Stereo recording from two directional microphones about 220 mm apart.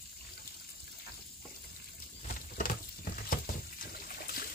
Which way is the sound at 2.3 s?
40° left (ahead or behind).